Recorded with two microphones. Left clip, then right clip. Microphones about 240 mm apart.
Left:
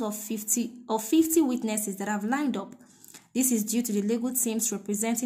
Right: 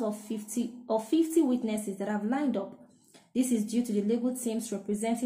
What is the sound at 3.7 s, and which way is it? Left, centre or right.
A woman's voice, left.